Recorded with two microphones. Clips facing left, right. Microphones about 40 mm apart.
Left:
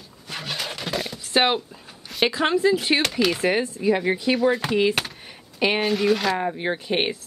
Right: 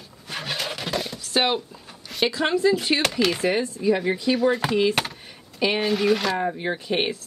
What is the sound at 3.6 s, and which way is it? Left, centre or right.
Speech, left.